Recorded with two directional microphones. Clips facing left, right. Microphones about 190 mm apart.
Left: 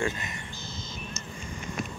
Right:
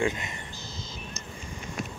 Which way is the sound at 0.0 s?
20° right (ahead or behind).